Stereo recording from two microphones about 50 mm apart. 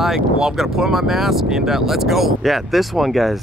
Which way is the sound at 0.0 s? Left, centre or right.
Centre.